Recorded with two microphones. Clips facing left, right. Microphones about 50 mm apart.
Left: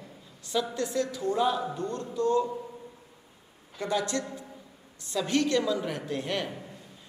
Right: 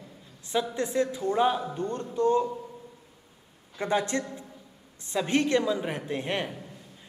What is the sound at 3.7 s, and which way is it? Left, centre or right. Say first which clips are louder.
A man's voice: right 2 dB; right.